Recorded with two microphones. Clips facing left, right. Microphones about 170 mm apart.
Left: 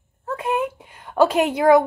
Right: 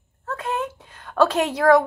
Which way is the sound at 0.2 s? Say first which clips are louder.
Left 4 dB; 15° left (ahead or behind).